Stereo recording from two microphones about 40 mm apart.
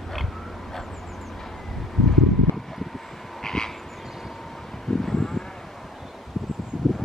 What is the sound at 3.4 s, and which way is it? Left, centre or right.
Frog, centre.